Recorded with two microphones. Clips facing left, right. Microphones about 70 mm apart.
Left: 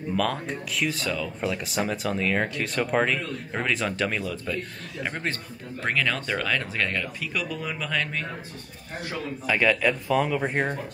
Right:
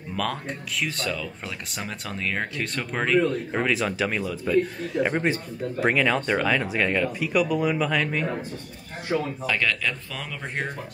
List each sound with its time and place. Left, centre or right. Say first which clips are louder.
0.1 s speech: left 2 dB; centre
9.1 s speech: right 9 dB; right
9.5 s speech: left 5 dB; centre